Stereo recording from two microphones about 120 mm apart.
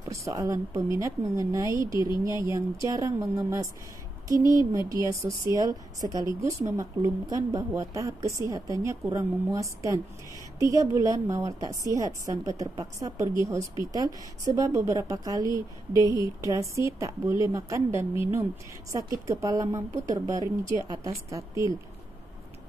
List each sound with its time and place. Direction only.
0.1 s a woman's voice: 25° right (ahead or behind)
2.0 s speech: 35° left (ahead or behind)
2.4 s a woman's voice: 25° right (ahead or behind)
4.5 s speech: 35° left (ahead or behind)
4.8 s a woman's voice: 25° right (ahead or behind)